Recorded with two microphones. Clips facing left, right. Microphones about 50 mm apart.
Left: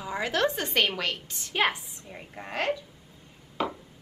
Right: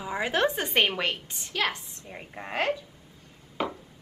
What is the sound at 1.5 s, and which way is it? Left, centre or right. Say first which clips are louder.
Speech: left 3 dB; centre.